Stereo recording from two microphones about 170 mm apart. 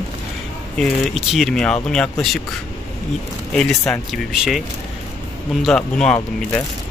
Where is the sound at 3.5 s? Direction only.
5° left (ahead or behind).